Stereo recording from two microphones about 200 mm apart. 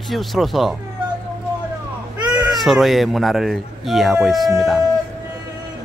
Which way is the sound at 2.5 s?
Centre (ahead or behind).